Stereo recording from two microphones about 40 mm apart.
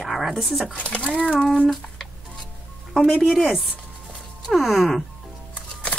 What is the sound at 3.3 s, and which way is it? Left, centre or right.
Speech, centre.